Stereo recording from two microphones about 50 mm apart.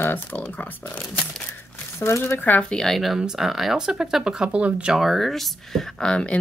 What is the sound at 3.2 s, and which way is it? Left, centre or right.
Speech, centre.